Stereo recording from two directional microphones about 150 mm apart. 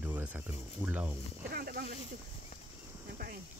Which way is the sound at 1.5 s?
90° right.